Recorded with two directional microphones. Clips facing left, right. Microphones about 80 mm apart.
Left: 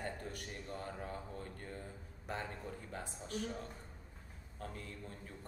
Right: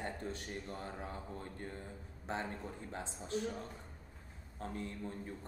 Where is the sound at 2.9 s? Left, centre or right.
Right.